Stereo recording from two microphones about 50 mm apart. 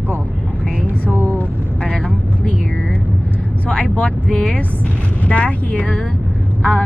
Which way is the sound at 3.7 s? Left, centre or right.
Left.